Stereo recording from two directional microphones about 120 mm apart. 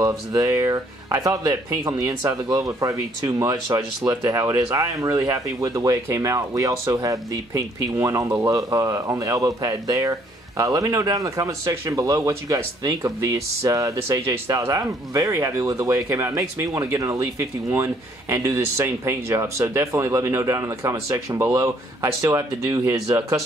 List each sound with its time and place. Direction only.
0.0 s speech: 25° right (ahead or behind)